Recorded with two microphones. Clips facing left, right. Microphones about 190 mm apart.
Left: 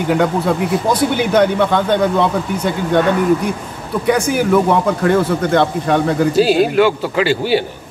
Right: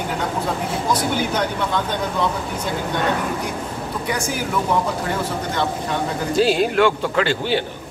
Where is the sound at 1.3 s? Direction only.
60° left (ahead or behind).